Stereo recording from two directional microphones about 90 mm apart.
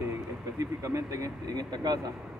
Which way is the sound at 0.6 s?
35° right (ahead or behind).